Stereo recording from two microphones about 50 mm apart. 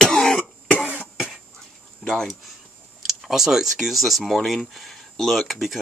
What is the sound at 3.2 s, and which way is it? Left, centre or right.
Speech, centre.